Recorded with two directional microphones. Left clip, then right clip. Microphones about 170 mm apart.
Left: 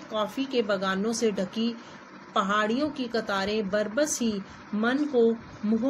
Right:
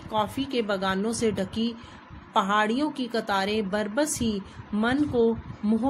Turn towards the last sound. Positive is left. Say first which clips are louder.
# right 1 dB
turn(degrees=-40)  # may be behind; listen again after turning